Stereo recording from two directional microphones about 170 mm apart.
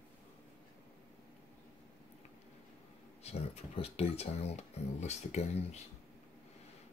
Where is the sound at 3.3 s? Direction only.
35° left (ahead or behind).